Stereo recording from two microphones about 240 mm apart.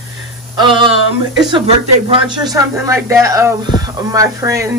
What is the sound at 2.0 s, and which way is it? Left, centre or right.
Speech, right.